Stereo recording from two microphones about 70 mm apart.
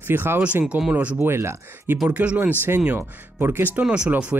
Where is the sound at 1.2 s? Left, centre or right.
Right.